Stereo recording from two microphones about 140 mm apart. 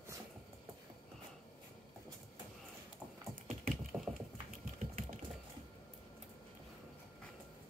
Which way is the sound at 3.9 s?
20° right (ahead or behind).